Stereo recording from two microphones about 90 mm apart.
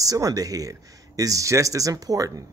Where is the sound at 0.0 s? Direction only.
40° right (ahead or behind).